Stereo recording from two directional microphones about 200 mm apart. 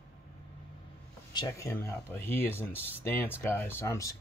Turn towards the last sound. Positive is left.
turn(degrees=15)  # may be behind; listen again after turning